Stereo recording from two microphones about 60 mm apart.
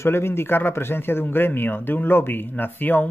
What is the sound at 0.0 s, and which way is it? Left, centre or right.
A man's voice, left.